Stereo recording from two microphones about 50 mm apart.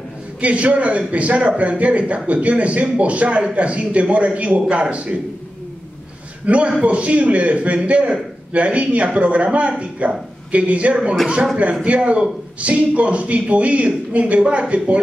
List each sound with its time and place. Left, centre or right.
0.4 s a man's voice: right
6.4 s a man's voice: right